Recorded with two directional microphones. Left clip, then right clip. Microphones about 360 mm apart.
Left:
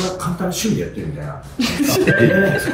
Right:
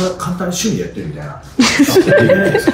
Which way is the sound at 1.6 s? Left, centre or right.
Centre.